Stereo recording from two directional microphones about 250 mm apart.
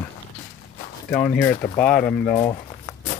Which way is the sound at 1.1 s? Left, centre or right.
Centre.